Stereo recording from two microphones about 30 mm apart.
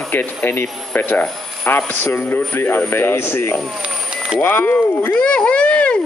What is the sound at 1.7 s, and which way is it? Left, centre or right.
Speech, left.